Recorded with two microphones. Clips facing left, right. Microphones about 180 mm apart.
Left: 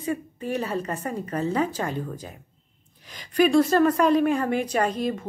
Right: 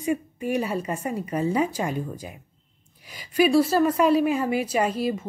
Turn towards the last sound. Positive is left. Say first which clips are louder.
# right 1 dB
turn(degrees=-5)  # may be behind; listen again after turning